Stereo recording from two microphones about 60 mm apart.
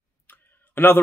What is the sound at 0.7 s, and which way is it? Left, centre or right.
Speech, left.